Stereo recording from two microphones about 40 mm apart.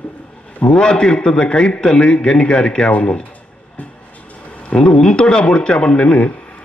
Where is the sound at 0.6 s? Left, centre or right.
Centre.